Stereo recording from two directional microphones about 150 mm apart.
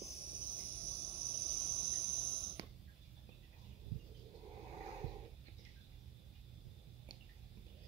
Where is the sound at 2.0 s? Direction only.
40° right (ahead or behind).